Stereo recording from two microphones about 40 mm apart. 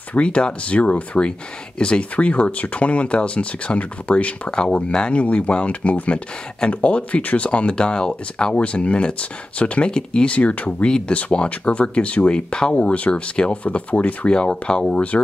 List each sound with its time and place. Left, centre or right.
0.2 s speech: left
5.2 s speech: left
8.5 s speech: left
14.5 s speech: left